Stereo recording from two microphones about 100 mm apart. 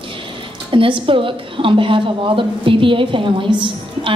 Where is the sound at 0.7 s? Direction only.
60° right (ahead or behind).